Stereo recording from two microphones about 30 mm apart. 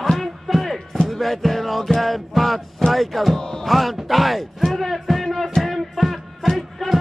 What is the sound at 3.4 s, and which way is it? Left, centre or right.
Music, left.